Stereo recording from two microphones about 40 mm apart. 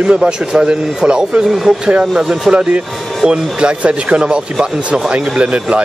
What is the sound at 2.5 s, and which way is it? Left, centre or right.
Speech, centre.